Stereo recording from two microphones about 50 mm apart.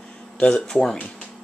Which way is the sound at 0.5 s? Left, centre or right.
Centre.